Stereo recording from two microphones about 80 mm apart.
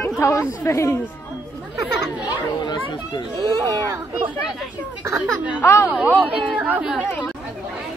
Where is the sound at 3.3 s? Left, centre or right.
Right.